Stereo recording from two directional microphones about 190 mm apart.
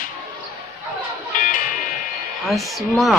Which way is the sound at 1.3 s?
45° left (ahead or behind).